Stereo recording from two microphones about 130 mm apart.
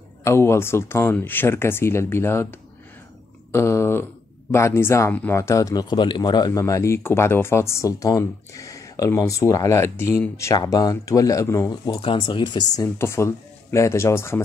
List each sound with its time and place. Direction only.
0.2 s speech: 20° left (ahead or behind)
3.5 s speech: 20° left (ahead or behind)
12.8 s speech: 20° left (ahead or behind)